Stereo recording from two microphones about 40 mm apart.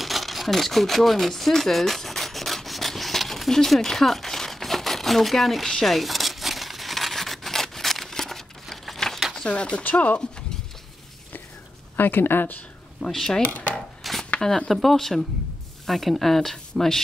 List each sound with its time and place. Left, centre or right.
0.0 s a sound: centre
5.9 s crumpling: centre
9.5 s speech: left
12.0 s speech: left
13.0 s speech: centre
13.5 s chopping: left
14.0 s a sound: centre
14.7 s speech: centre